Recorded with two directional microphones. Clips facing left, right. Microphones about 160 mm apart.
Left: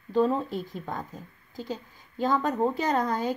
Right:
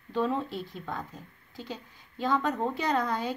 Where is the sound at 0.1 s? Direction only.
40° left (ahead or behind).